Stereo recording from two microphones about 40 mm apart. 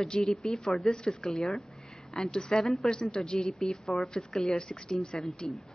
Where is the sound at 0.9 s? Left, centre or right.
Centre.